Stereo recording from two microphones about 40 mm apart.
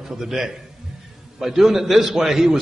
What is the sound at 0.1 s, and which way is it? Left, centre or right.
A man's voice, centre.